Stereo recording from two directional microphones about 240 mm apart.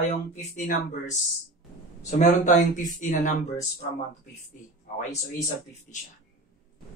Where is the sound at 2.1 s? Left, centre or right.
Left.